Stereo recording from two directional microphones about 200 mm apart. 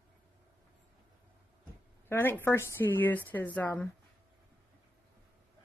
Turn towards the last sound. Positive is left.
turn(degrees=10)  # may be behind; listen again after turning